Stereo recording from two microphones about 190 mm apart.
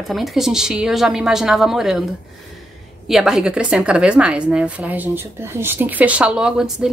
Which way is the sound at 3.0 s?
Centre (ahead or behind).